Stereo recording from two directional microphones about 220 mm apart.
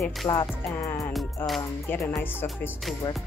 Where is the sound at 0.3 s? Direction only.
10° left (ahead or behind).